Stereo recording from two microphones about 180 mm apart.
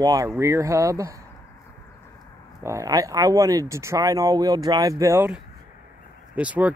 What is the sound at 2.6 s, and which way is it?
Speech, 15° right (ahead or behind).